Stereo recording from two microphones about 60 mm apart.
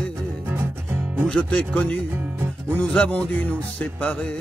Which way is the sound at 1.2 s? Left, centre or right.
Centre.